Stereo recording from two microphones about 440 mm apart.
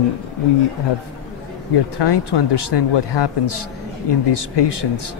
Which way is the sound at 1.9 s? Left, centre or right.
Left.